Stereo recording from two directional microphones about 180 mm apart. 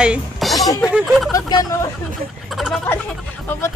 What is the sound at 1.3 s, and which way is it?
Speech, 20° left (ahead or behind).